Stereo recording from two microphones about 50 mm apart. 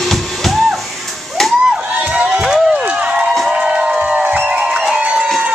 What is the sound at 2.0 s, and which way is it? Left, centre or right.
Crowd, right.